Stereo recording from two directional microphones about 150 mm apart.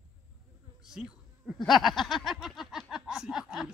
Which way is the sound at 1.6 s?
Centre (ahead or behind).